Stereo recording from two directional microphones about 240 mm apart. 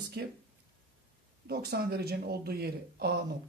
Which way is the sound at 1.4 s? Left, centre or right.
Right.